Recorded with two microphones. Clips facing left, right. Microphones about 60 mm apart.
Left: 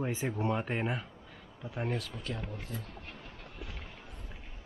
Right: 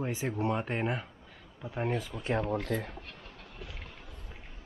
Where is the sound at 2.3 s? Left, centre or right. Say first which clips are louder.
Right 11 dB; right.